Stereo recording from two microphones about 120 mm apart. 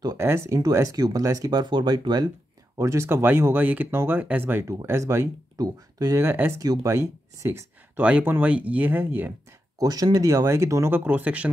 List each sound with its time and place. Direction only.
0.2 s speech: 20° right (ahead or behind)
2.8 s speech: 25° right (ahead or behind)
6.2 s speech: 20° right (ahead or behind)
6.6 s speech: 30° right (ahead or behind)
9.8 s speech: 30° right (ahead or behind); by 11.5 s 10° right (ahead or behind)